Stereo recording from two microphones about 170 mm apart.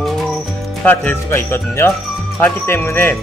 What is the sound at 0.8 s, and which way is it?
Speech, 10° left (ahead or behind).